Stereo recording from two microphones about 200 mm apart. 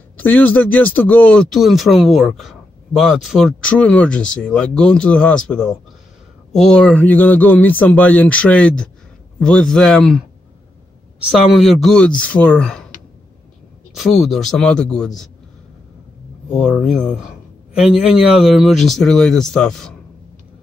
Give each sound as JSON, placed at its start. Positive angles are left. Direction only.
{"t": 0.2, "sound": "speech", "side_deg": 10}
{"t": 11.2, "sound": "speech", "side_deg": 0}
{"t": 13.9, "sound": "speech", "side_deg": 0}
{"t": 16.5, "sound": "speech", "side_deg": 0}